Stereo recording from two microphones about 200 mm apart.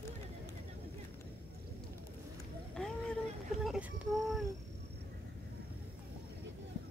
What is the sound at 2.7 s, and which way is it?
Cat, 5° left (ahead or behind).